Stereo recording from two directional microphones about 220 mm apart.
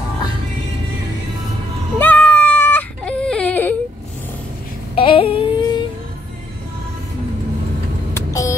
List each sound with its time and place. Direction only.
2.0 s whimper: 5° left (ahead or behind)
4.9 s humming: 25° left (ahead or behind)
8.1 s vehicle: 15° left (ahead or behind)